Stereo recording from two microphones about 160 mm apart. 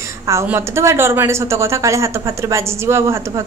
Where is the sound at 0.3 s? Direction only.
15° right (ahead or behind).